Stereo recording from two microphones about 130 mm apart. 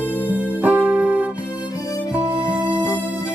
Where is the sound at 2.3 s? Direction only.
25° left (ahead or behind).